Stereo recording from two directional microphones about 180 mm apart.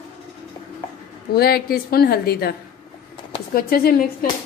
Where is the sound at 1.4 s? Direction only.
60° left (ahead or behind).